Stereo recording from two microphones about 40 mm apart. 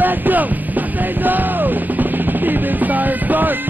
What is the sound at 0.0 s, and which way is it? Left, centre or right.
Music, right.